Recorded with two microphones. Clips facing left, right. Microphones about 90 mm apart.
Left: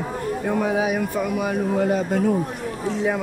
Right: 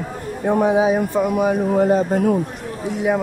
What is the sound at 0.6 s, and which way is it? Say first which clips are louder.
Speech: right 7 dB; 25° right (ahead or behind).